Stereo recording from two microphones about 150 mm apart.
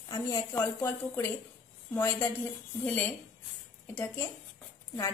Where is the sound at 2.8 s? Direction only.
10° left (ahead or behind).